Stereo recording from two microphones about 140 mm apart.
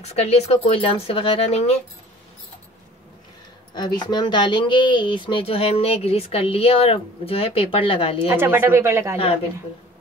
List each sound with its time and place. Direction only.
0.0 s speech: 50° left (ahead or behind)
3.7 s speech: 30° left (ahead or behind)
8.4 s speech: 15° right (ahead or behind)